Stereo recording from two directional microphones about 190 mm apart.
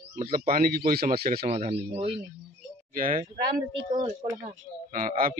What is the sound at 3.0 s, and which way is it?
Speech, 45° right (ahead or behind).